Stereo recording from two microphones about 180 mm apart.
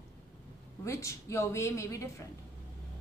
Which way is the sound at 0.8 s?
15° left (ahead or behind).